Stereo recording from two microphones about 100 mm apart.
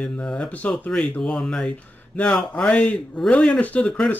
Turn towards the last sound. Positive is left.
turn(degrees=10)  # may be behind; listen again after turning